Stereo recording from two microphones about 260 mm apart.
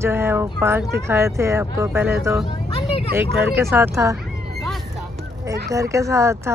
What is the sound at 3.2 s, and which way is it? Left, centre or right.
Speech, centre.